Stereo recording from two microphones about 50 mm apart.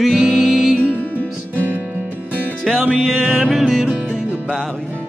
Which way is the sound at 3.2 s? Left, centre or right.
Right.